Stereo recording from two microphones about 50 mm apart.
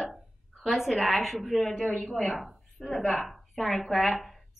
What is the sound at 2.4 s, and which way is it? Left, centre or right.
A woman's voice, centre.